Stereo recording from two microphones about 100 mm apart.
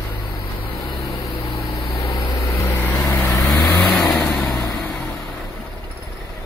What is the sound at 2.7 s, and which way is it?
Vehicle, 20° left (ahead or behind).